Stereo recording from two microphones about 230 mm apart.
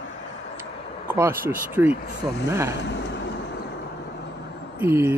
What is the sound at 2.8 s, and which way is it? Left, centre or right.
Vehicle, left.